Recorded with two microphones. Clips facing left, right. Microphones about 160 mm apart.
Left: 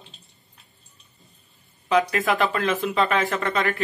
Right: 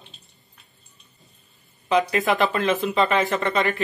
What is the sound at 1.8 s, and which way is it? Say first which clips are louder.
A man's voice: right 1 dB; centre (ahead or behind).